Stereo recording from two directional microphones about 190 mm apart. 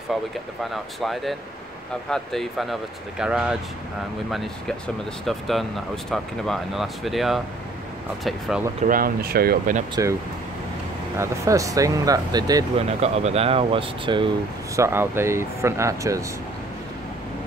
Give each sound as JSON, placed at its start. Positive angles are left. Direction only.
{"t": 0.7, "sound": "speech", "side_deg": 0}
{"t": 8.8, "sound": "speech", "side_deg": -50}
{"t": 11.1, "sound": "speech", "side_deg": -15}
{"t": 12.7, "sound": "speech", "side_deg": -35}
{"t": 14.8, "sound": "speech", "side_deg": -10}